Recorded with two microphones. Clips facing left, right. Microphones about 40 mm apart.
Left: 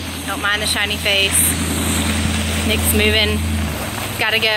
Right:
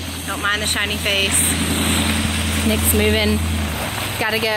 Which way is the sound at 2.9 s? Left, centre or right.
Left.